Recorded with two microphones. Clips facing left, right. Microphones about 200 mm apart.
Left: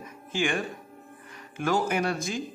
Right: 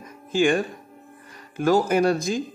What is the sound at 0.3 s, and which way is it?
Speech, 35° right (ahead or behind).